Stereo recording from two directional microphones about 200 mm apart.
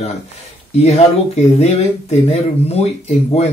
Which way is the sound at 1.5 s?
35° left (ahead or behind).